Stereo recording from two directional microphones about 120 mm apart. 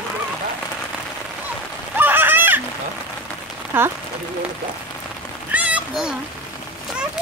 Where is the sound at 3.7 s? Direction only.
15° right (ahead or behind).